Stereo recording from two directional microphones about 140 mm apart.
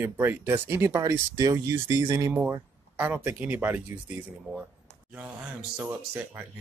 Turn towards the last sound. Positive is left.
turn(degrees=-15)  # may be behind; listen again after turning